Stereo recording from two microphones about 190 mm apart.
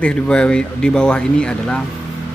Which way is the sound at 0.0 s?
5° left (ahead or behind).